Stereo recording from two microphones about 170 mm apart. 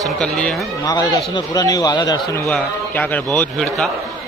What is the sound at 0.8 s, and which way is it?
A man's voice, 20° left (ahead or behind).